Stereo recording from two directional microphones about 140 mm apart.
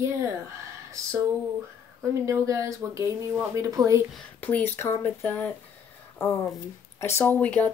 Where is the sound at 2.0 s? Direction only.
20° right (ahead or behind).